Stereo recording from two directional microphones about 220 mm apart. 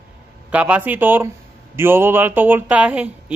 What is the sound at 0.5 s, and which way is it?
Speech, 5° right (ahead or behind).